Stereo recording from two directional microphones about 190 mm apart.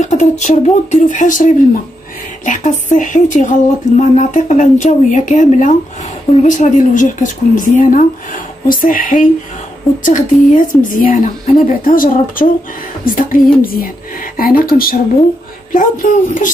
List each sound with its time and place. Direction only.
0.0 s speech: 40° left (ahead or behind)